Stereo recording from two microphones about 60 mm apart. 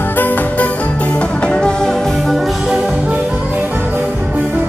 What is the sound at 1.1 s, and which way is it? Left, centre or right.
Music, centre.